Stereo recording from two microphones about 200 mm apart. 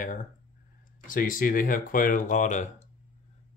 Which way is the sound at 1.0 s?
45° left (ahead or behind).